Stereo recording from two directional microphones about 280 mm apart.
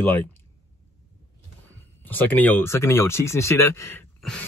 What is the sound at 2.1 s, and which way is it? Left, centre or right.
Speech, centre.